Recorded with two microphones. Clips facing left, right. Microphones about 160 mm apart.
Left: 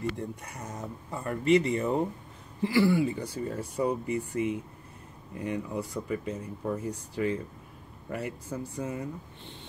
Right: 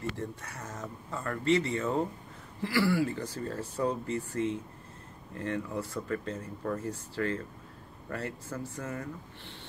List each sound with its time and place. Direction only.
0.2 s speech: 15° left (ahead or behind)